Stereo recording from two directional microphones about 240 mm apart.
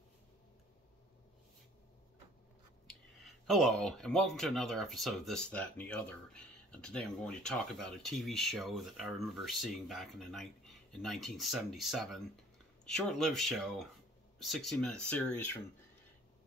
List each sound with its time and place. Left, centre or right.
3.4 s speech: centre